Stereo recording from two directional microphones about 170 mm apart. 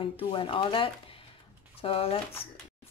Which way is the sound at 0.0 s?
30° left (ahead or behind).